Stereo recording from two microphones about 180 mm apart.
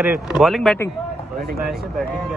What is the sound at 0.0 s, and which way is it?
Speech, 10° right (ahead or behind).